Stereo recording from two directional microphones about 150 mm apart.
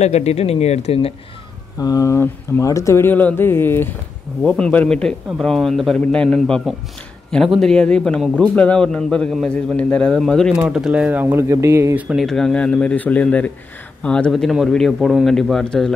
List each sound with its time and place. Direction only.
0.0 s speech: 45° left (ahead or behind)
1.8 s a man's voice: 25° left (ahead or behind); by 12.3 s 10° right (ahead or behind)
12.3 s a man's voice: 5° left (ahead or behind)